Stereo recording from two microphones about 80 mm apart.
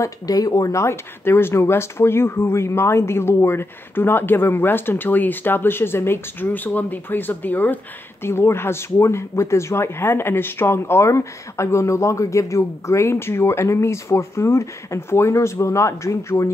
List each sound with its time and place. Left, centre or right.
0.0 s speech: left